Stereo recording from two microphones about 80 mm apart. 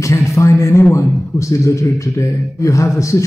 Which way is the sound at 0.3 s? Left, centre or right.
Left.